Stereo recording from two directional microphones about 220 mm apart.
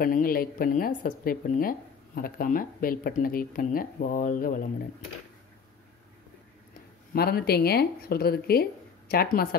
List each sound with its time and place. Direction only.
0.0 s a woman's voice: 40° left (ahead or behind)
7.2 s speech: 45° left (ahead or behind)